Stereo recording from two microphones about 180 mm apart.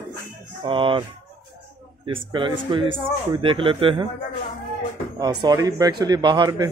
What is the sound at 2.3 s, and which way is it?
A man's voice, 25° right (ahead or behind).